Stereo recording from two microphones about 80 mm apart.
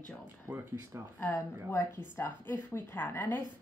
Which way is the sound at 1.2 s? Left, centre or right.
Left.